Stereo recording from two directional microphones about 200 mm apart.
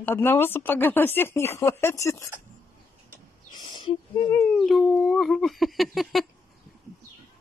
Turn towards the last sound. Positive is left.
turn(degrees=0)  # may be behind; listen again after turning